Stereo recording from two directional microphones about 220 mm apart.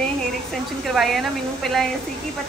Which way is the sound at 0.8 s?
Centre (ahead or behind).